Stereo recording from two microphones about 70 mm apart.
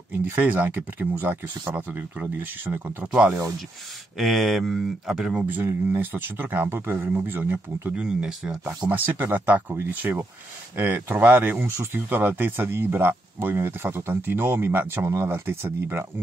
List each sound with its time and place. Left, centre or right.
0.2 s speech: right
4.2 s speech: centre
5.4 s speech: right
7.9 s speech: centre
8.6 s speech: right